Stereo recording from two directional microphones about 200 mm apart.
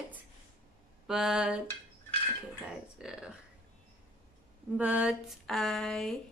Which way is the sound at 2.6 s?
5° right (ahead or behind).